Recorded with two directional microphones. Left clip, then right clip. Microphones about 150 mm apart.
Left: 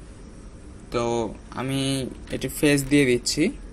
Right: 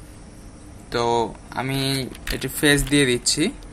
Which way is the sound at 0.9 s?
15° left (ahead or behind).